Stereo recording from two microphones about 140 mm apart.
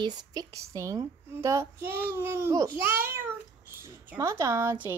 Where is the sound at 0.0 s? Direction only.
30° right (ahead or behind).